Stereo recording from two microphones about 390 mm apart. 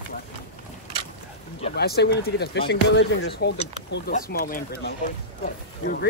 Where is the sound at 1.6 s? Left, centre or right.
Left.